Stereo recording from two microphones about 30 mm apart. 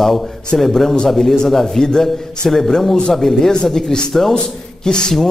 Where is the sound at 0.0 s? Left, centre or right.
Centre; by 5.1 s left.